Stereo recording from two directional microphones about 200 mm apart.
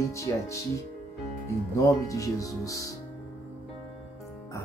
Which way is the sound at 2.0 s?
15° left (ahead or behind).